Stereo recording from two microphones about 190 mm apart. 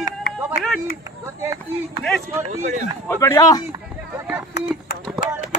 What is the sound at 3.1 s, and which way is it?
Speech, 15° left (ahead or behind).